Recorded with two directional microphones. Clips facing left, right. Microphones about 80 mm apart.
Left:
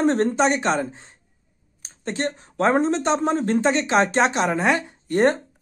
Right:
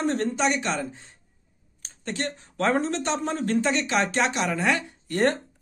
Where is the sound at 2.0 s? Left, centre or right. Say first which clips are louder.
Left 5 dB; left.